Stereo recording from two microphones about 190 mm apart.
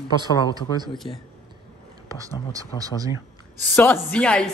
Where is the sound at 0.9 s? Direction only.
Centre (ahead or behind).